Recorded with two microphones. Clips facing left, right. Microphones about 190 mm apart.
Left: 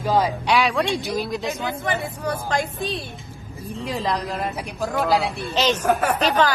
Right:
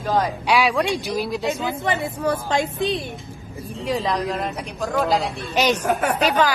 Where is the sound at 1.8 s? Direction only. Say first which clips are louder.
Right 4 dB; 15° right (ahead or behind).